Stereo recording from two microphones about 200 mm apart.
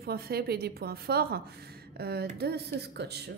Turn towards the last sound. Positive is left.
turn(degrees=-55)  # may be behind; listen again after turning